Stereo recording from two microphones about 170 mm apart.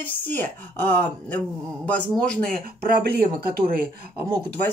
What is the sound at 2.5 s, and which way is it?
Speech, 60° right (ahead or behind).